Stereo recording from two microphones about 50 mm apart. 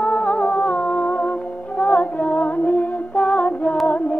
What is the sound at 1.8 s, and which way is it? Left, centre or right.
Music, left.